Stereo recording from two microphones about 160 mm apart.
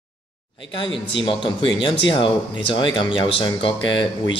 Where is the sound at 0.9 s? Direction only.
30° left (ahead or behind).